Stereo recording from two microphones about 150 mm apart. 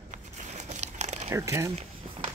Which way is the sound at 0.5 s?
50° right (ahead or behind).